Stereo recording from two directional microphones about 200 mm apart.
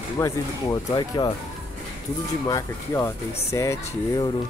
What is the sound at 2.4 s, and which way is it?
Speech, 15° left (ahead or behind).